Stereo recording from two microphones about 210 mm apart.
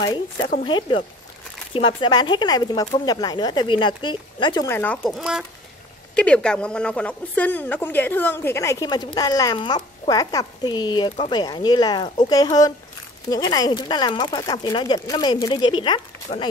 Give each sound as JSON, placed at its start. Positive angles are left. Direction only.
{"t": 0.0, "sound": "speech", "side_deg": 20}
{"t": 5.0, "sound": "speech", "side_deg": 0}